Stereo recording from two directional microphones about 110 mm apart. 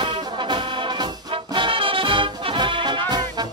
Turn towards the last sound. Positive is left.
turn(degrees=-40)  # may be behind; listen again after turning